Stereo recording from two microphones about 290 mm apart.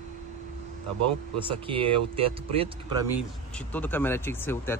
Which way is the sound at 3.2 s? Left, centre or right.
Centre.